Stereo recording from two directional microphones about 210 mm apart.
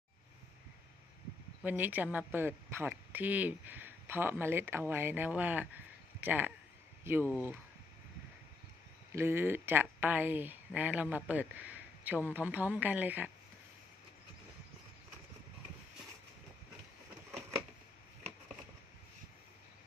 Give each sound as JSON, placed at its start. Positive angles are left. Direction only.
{"t": 1.6, "sound": "speech", "side_deg": -10}
{"t": 9.1, "sound": "speech", "side_deg": -10}